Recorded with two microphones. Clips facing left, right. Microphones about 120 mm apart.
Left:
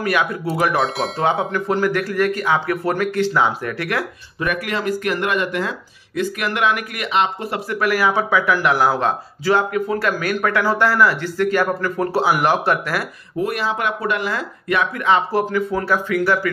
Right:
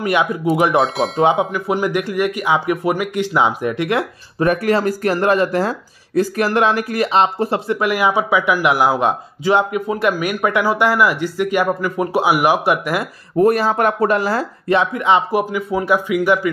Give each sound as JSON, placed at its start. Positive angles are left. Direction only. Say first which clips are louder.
{"t": 0.0, "sound": "speech", "louder": "right 3 dB", "side_deg": -20}
{"t": 4.4, "sound": "speech", "louder": "right 7 dB", "side_deg": -35}
{"t": 13.4, "sound": "speech", "louder": "right 7 dB", "side_deg": -40}